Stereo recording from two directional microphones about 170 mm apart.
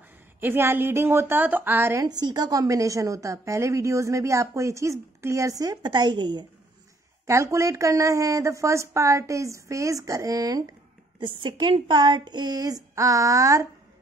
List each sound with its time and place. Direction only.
0.4 s a woman's voice: 15° right (ahead or behind)